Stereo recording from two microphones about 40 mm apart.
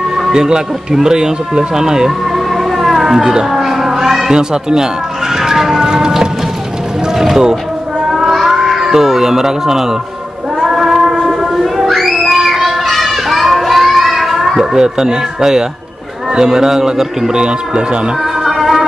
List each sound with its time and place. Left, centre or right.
0.3 s speech: centre
3.1 s cat: centre
4.3 s a man's voice: centre
5.4 s a sound: centre
7.2 s a man's voice: centre
8.1 s cat: centre
10.6 s a sound: centre
16.3 s a man's voice: centre
18.4 s music: centre